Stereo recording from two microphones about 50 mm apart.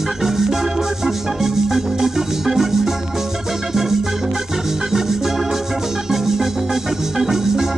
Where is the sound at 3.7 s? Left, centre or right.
Centre.